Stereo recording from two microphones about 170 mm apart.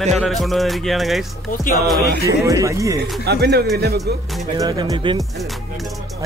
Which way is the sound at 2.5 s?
20° right (ahead or behind).